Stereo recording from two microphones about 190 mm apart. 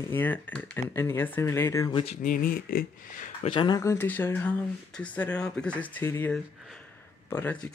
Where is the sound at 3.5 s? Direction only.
25° left (ahead or behind).